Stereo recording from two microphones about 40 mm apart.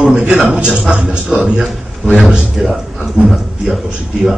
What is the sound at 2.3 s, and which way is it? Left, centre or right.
Speech, centre.